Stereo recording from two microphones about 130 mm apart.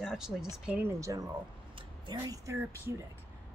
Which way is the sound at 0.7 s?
15° right (ahead or behind).